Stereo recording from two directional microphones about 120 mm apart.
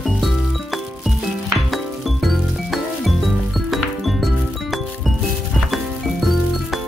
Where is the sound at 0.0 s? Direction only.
Centre (ahead or behind).